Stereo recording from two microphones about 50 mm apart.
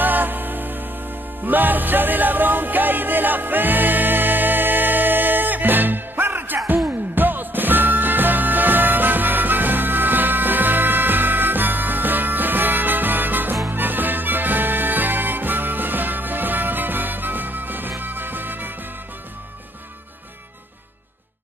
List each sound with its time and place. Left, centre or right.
0.0 s music: right